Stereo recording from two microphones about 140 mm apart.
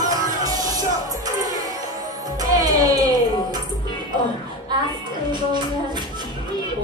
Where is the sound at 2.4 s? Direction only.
25° right (ahead or behind).